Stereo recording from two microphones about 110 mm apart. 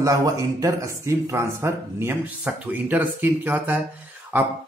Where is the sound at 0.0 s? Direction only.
30° right (ahead or behind).